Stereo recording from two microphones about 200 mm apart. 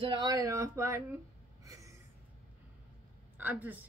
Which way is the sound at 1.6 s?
15° right (ahead or behind).